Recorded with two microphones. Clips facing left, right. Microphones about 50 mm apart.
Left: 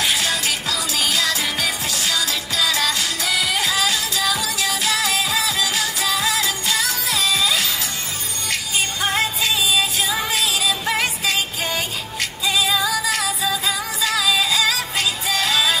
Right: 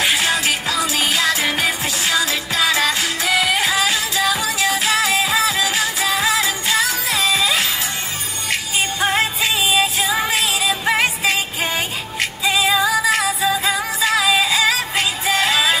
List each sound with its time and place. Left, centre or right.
0.0 s music: right